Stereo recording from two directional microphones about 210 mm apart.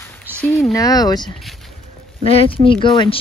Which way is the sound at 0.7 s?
15° left (ahead or behind).